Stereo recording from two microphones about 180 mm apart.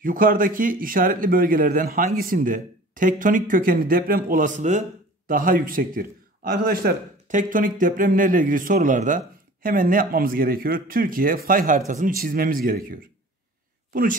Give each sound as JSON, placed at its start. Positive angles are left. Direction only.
{"t": 0.0, "sound": "a man's voice", "side_deg": -50}